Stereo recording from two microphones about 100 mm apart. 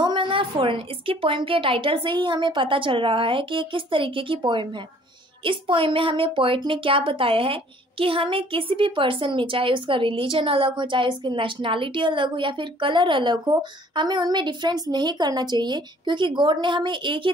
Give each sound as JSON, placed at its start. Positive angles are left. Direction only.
{"t": 0.0, "sound": "a woman's voice", "side_deg": -55}